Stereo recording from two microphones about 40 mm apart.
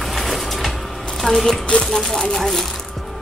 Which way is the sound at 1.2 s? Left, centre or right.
Centre.